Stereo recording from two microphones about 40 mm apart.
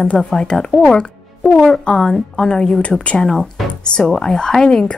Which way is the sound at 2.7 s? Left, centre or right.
Left.